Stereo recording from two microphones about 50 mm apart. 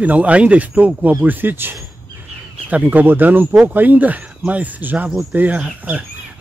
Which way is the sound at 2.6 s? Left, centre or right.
Right.